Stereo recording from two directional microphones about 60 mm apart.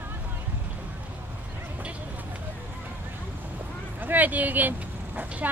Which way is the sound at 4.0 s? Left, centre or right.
Right.